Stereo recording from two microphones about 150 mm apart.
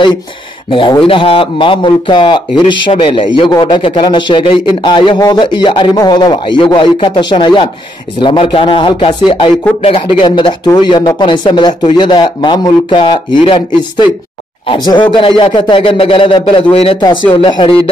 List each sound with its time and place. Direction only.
0.7 s a man's voice: 35° left (ahead or behind)